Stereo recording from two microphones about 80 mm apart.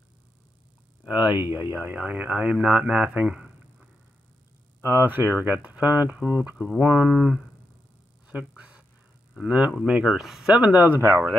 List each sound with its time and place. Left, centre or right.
1.0 s speech: centre
4.8 s speech: right; by 7.3 s centre
8.3 s a sound: centre
9.5 s speech: centre
10.5 s speech: centre